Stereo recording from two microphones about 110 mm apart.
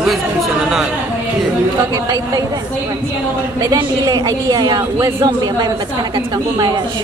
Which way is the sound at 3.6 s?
30° right (ahead or behind).